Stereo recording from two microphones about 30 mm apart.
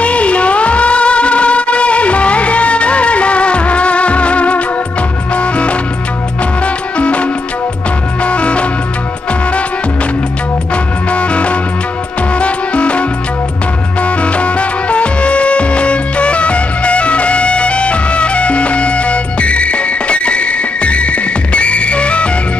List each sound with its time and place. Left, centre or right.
0.0 s music: left
11.1 s music: left
14.0 s music: left